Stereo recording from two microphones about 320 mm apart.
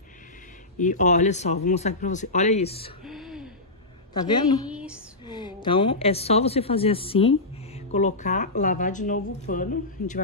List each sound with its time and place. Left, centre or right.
0.7 s speech: left
3.1 s gasp: centre
4.6 s a sound: centre
5.2 s speech: centre